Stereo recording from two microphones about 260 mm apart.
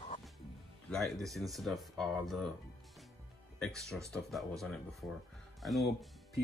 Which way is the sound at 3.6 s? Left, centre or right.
Centre.